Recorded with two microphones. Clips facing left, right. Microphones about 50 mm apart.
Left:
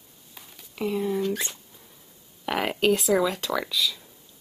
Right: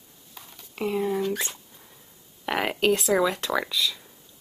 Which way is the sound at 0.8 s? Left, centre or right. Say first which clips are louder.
Even; centre.